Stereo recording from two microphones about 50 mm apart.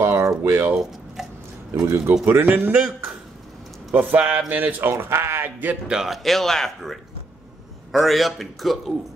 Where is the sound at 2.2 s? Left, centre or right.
Right.